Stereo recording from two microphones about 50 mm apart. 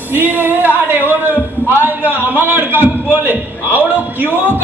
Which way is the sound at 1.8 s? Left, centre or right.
Right.